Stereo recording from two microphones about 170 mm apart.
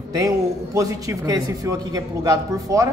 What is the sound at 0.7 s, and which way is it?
A man's voice, 20° right (ahead or behind).